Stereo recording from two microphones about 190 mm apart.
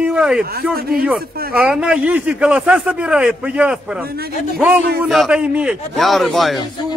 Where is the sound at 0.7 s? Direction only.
55° right (ahead or behind).